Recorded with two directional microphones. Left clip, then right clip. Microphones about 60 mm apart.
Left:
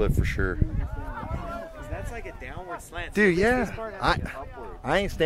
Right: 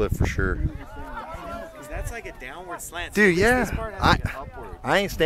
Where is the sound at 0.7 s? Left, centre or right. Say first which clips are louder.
Right 1 dB; right.